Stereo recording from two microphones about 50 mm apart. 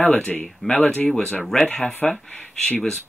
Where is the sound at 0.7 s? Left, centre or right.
Left.